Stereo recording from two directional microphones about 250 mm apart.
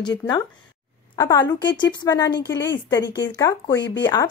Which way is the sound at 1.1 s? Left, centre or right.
Centre.